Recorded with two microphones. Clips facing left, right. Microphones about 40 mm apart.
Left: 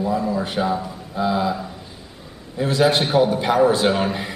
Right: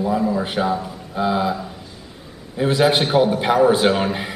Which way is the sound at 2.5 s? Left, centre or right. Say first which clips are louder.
Right 1 dB; centre.